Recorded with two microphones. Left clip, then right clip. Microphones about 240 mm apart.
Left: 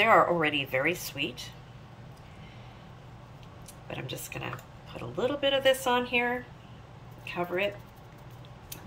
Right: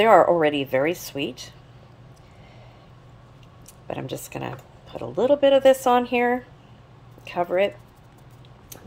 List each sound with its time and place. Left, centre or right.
0.0 s speech: right
3.8 s speech: right